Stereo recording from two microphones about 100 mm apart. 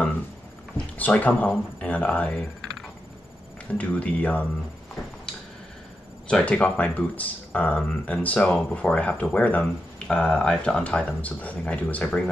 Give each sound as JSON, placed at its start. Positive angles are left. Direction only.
{"t": 0.7, "sound": "speech", "side_deg": 15}
{"t": 3.7, "sound": "speech", "side_deg": 15}
{"t": 6.2, "sound": "speech", "side_deg": 5}